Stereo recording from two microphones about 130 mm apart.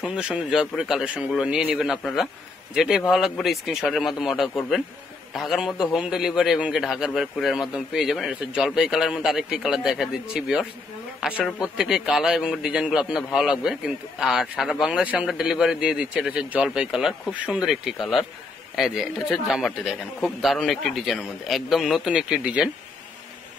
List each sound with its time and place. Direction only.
0.0 s a man's voice: 5° right (ahead or behind)